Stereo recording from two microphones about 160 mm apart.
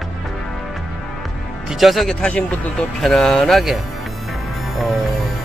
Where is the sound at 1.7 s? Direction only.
Centre (ahead or behind).